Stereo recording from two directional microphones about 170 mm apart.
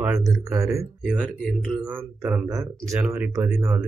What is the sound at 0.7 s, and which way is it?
Speech, 5° right (ahead or behind).